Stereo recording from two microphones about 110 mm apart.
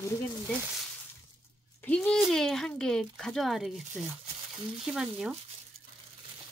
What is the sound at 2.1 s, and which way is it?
A child's voice, centre (ahead or behind).